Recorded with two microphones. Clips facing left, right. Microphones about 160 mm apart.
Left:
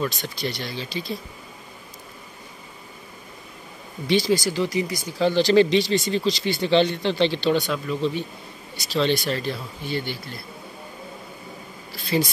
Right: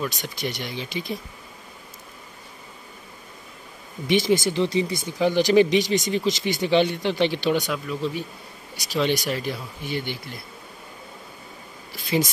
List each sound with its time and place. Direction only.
0.2 s speech: 15° right (ahead or behind)
4.1 s speech: 20° right (ahead or behind)
5.2 s speech: 15° right (ahead or behind)
12.1 s speech: 15° right (ahead or behind)